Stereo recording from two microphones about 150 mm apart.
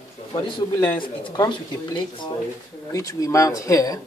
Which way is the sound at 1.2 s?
30° left (ahead or behind).